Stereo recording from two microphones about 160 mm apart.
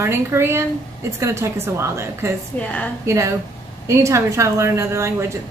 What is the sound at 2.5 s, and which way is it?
Speech, 10° left (ahead or behind).